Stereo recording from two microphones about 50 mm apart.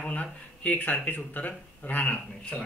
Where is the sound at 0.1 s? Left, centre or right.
Left.